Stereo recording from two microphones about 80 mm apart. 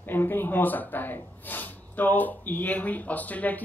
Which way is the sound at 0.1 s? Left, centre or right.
Left.